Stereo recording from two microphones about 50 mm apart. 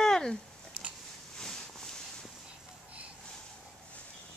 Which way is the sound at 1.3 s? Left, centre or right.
Centre.